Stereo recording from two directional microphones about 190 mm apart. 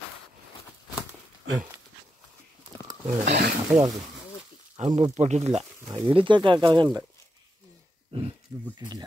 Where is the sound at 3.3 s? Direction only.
55° right (ahead or behind).